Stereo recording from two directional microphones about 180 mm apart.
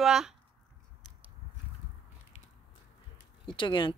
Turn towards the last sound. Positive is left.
turn(degrees=25)  # may be behind; listen again after turning